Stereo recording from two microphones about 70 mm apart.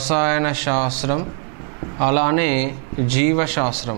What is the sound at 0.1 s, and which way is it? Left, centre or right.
A man's voice, centre.